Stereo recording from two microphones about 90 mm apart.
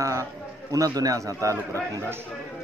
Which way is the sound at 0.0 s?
35° right (ahead or behind).